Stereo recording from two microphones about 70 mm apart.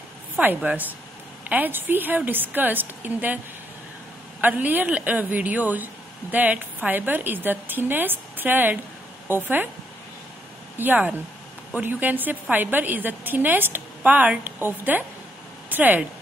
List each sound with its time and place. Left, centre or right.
0.6 s a woman's voice: right
4.4 s a woman's voice: right
10.8 s a woman's voice: right